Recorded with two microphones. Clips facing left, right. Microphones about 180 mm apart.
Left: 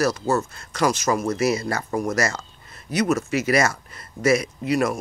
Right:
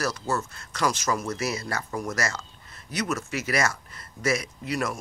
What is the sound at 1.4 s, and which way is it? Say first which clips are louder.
Speech: left 8 dB; 15° left (ahead or behind).